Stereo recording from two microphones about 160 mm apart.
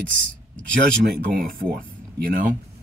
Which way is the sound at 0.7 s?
60° right (ahead or behind).